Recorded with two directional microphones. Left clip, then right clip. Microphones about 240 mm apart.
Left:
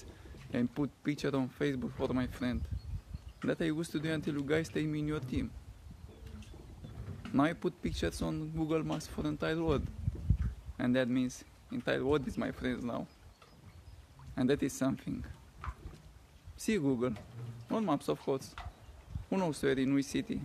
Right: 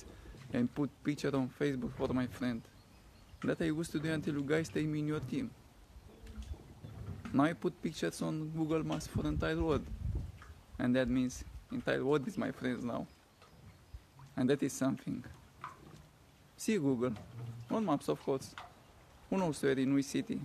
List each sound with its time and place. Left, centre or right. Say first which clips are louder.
0.0 s speech: left 1 dB; centre
7.3 s speech: left 1 dB; centre
14.3 s speech: left 1 dB; centre
16.5 s speech: left 1 dB; centre